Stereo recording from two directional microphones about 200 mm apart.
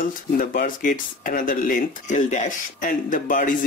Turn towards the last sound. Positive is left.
turn(degrees=40)  # may be behind; listen again after turning